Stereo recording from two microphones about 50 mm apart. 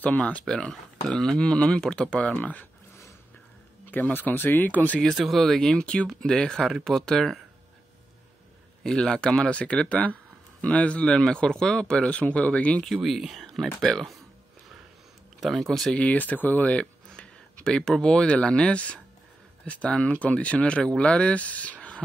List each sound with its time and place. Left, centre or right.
0.0 s speech: left
3.9 s speech: left
5.1 s speech: centre
5.7 s speech: centre
8.8 s speech: centre; by 12.8 s left
12.8 s speech: centre
15.4 s speech: centre
15.9 s speech: left
17.6 s speech: centre